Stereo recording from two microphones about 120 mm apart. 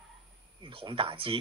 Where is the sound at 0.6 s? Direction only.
45° right (ahead or behind).